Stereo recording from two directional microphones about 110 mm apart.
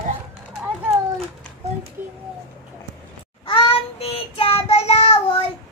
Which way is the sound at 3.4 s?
55° left (ahead or behind).